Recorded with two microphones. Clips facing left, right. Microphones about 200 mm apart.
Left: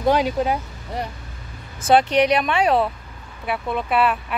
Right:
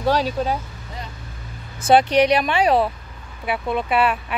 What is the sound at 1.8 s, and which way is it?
Speech, centre (ahead or behind).